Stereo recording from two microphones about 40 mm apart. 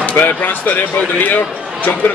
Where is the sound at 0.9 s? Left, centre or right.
Left.